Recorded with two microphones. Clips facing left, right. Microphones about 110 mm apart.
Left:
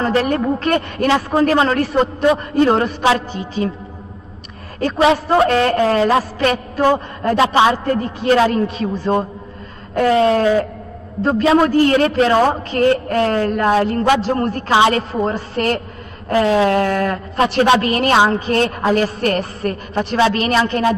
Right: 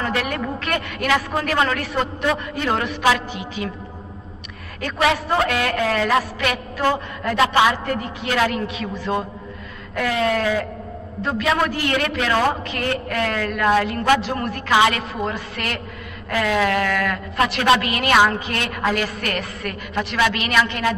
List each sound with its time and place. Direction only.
0.0 s speech: 35° left (ahead or behind)
4.7 s speech: 30° left (ahead or behind)